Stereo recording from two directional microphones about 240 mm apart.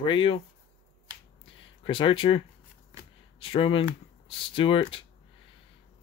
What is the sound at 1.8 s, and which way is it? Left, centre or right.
Speech, left.